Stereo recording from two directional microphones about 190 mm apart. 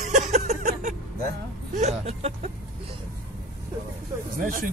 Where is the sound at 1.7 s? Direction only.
35° right (ahead or behind).